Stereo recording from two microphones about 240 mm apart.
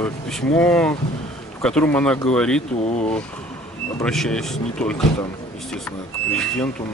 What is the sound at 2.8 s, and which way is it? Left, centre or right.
Speech, left.